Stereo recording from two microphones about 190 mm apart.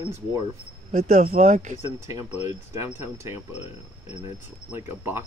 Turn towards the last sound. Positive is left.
turn(degrees=-10)  # may be behind; listen again after turning